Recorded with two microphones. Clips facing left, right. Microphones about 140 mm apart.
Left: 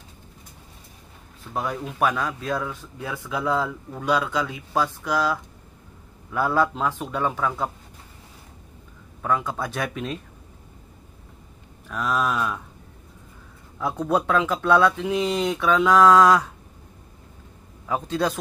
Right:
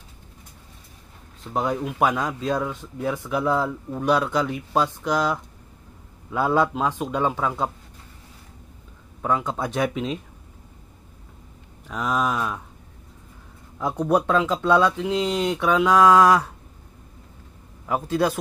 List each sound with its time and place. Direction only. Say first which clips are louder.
1.5 s speech: right 4 dB; 20° right (ahead or behind)
9.2 s speech: right 1 dB; 20° right (ahead or behind)
11.9 s speech: even; 15° right (ahead or behind)
13.7 s speech: right 2 dB; 15° right (ahead or behind)
17.8 s speech: right 2 dB; 5° right (ahead or behind)